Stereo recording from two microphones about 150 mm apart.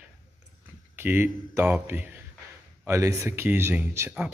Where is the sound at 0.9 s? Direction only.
15° right (ahead or behind).